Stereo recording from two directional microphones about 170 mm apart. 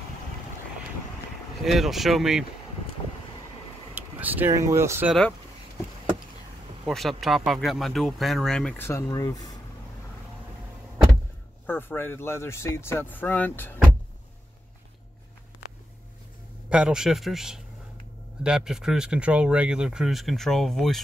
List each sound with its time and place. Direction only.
1.6 s speech: centre (ahead or behind)
3.9 s speech: 10° right (ahead or behind)
6.9 s speech: centre (ahead or behind); by 9.4 s 20° left (ahead or behind)
11.6 s speech: 10° left (ahead or behind)
16.6 s speech: 5° right (ahead or behind)